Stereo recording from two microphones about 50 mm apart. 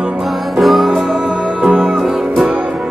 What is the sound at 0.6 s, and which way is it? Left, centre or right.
Music, centre.